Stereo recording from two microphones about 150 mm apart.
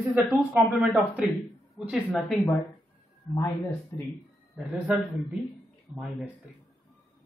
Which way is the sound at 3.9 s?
20° left (ahead or behind).